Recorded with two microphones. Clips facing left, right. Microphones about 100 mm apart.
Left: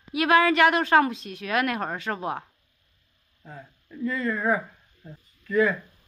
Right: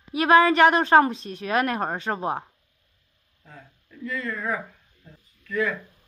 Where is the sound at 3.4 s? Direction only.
25° left (ahead or behind).